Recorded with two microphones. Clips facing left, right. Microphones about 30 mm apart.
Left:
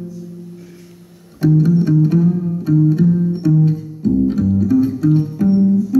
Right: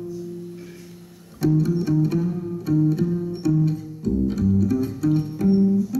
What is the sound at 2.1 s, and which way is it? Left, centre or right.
Music, centre.